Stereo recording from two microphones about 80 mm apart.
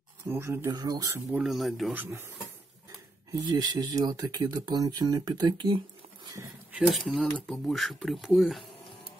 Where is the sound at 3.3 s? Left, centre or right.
Right.